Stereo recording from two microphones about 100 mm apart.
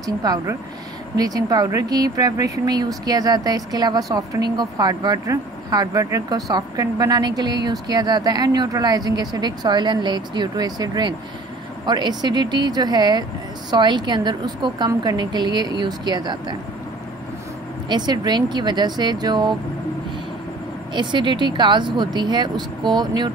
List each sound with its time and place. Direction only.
0.0 s a woman's voice: 40° right (ahead or behind)
17.8 s a woman's voice: 45° right (ahead or behind)
20.9 s a woman's voice: 50° right (ahead or behind)